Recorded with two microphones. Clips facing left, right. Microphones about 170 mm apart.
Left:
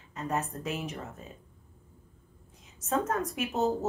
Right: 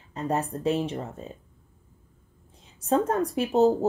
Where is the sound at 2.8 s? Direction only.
30° right (ahead or behind).